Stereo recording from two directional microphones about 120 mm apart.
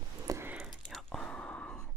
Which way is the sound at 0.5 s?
5° right (ahead or behind).